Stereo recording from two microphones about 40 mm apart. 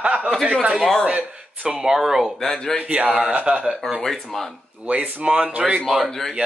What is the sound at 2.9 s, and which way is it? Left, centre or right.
Speech, right.